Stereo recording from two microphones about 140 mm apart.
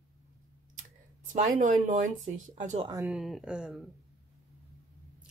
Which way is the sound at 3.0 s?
Centre (ahead or behind).